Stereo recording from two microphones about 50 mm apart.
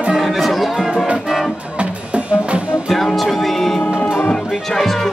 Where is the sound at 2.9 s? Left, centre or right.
Centre.